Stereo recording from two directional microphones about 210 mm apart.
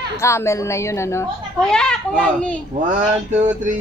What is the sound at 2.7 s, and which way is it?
Speech, 35° right (ahead or behind).